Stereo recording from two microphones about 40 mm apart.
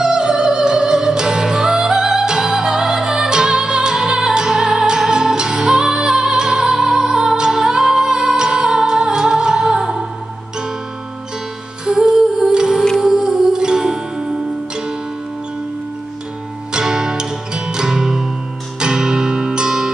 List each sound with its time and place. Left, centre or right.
0.0 s music: centre
11.8 s humming: centre
13.0 s music: centre
16.7 s music: centre